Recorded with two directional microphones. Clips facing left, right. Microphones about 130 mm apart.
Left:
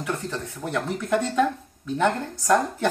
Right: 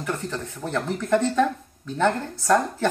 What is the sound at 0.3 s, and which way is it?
Speech, 10° left (ahead or behind).